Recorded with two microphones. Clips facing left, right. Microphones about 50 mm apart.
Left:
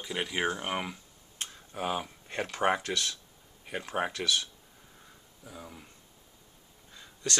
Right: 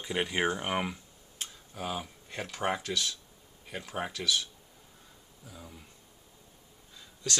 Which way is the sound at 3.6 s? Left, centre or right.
Left.